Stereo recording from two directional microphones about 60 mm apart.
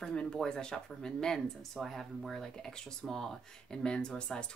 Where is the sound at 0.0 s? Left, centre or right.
Centre.